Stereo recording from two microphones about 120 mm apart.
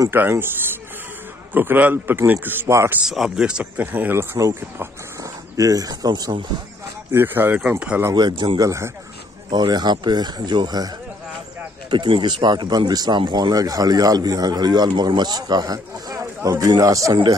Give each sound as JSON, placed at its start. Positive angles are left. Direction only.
{"t": 0.1, "sound": "a man's voice", "side_deg": -20}
{"t": 1.5, "sound": "a man's voice", "side_deg": -15}
{"t": 3.1, "sound": "speech", "side_deg": 0}
{"t": 7.1, "sound": "a man's voice", "side_deg": -20}
{"t": 8.1, "sound": "speech", "side_deg": -35}
{"t": 8.5, "sound": "speech", "side_deg": -25}
{"t": 9.5, "sound": "speech", "side_deg": -35}
{"t": 11.9, "sound": "speech", "side_deg": -40}